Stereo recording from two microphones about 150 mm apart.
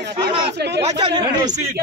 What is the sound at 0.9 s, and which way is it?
Speech, 30° right (ahead or behind).